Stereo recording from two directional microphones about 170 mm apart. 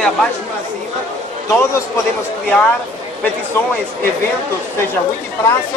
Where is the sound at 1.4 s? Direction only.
15° left (ahead or behind).